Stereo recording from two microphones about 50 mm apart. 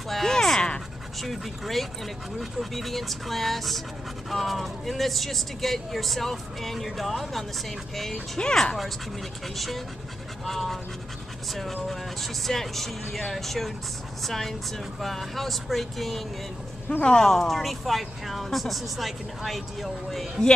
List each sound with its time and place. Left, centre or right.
0.1 s a sound: centre
1.2 s speech: centre
8.4 s speech: centre
9.6 s speech: centre